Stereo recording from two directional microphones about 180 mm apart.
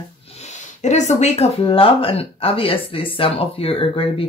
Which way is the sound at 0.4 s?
40° left (ahead or behind).